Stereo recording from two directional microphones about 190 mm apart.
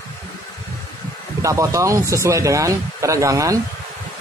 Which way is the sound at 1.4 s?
15° right (ahead or behind).